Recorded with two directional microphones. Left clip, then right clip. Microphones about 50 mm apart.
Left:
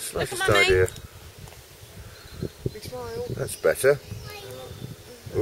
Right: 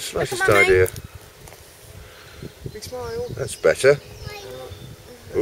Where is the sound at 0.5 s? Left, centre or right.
Left.